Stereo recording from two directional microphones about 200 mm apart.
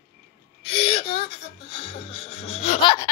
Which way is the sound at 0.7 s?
30° left (ahead or behind).